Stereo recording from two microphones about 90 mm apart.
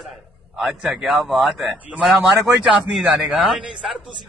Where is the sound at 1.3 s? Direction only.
5° right (ahead or behind).